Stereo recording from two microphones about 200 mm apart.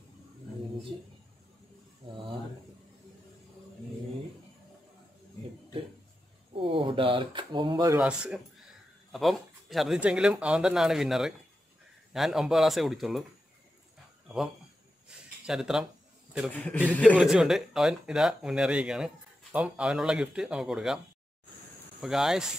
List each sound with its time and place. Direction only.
6.5 s speech: 25° right (ahead or behind)
8.0 s speech: 5° right (ahead or behind)
15.0 s a sound: 5° right (ahead or behind)
16.5 s a man's voice: 10° left (ahead or behind)
17.1 s speech: centre (ahead or behind)
22.0 s speech: centre (ahead or behind)